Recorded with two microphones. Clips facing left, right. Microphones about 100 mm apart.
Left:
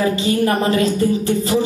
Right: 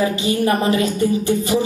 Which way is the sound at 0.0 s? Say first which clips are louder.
Left 1 dB; 20° right (ahead or behind).